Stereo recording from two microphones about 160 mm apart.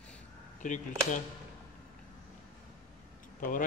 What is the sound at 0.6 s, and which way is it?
Speech, 50° left (ahead or behind).